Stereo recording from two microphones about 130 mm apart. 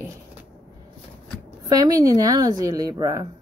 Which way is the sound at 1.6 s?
30° right (ahead or behind).